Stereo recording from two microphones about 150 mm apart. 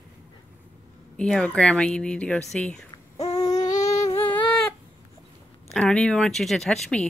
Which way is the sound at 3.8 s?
20° left (ahead or behind).